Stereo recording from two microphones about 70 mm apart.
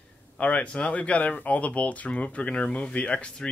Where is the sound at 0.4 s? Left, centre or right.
Centre.